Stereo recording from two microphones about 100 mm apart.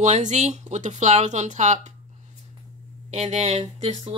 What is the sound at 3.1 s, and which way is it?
Speech, 90° right.